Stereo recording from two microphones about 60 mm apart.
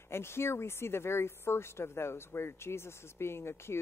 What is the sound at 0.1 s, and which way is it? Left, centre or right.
Speech, left.